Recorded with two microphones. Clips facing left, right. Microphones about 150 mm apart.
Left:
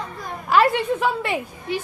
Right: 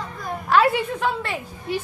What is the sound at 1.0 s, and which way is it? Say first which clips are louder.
Speech: left 2 dB; 15° left (ahead or behind).